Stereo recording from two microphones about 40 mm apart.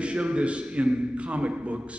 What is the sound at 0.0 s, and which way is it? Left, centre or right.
A man's voice, right.